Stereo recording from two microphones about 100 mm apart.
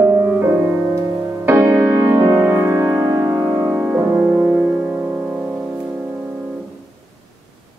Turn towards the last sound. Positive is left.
turn(degrees=-15)  # may be behind; listen again after turning